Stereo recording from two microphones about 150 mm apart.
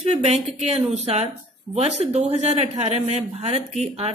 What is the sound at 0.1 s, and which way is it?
A woman's voice, 45° right (ahead or behind).